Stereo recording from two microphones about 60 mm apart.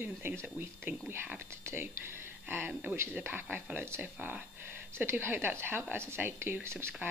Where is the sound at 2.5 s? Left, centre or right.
Right.